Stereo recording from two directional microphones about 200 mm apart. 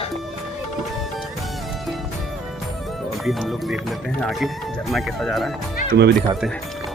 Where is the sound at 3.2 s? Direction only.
Centre (ahead or behind).